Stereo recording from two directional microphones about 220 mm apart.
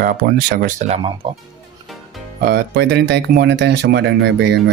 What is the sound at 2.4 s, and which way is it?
Speech, 50° right (ahead or behind).